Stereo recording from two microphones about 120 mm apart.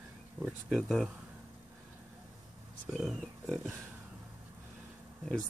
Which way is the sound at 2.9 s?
Centre (ahead or behind).